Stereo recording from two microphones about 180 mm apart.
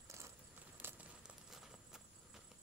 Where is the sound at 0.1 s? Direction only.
15° right (ahead or behind).